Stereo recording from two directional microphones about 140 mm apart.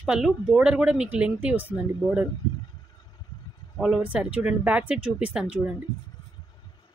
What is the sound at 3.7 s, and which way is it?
Speech, 5° right (ahead or behind).